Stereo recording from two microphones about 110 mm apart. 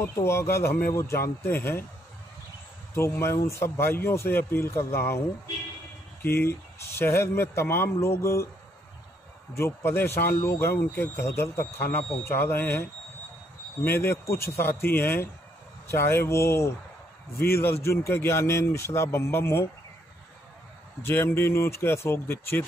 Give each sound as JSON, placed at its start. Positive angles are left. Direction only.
{"t": 0.0, "sound": "speech", "side_deg": 25}
{"t": 2.9, "sound": "speech", "side_deg": 25}
{"t": 6.2, "sound": "speech", "side_deg": 20}
{"t": 9.5, "sound": "speech", "side_deg": 25}
{"t": 13.8, "sound": "speech", "side_deg": 20}
{"t": 21.0, "sound": "speech", "side_deg": 20}